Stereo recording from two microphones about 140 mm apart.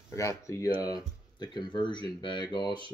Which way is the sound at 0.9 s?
30° left (ahead or behind).